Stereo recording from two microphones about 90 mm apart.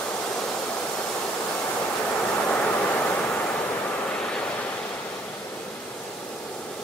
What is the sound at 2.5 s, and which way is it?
Waves, 15° left (ahead or behind).